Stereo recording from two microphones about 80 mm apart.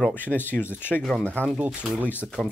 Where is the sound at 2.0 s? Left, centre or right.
Left.